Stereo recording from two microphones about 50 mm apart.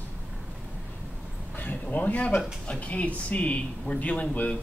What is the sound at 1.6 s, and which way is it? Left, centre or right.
Speech, left.